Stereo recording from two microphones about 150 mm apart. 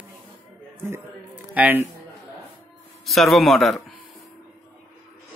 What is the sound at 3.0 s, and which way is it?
Speech, centre (ahead or behind).